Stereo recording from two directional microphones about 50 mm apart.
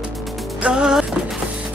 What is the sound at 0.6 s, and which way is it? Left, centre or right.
Music, centre.